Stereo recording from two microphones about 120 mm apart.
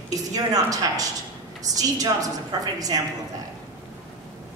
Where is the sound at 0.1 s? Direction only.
30° right (ahead or behind).